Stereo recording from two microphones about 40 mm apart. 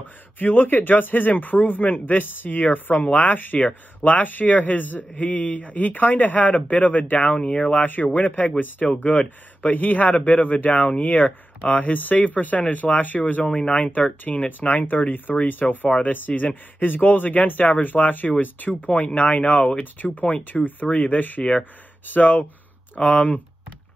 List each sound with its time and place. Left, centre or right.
0.4 s a man's voice: left
7.3 s speech: left
7.7 s a man's voice: left
13.5 s a man's voice: left
19.1 s speech: left
20.3 s a man's voice: left
22.9 s speech: left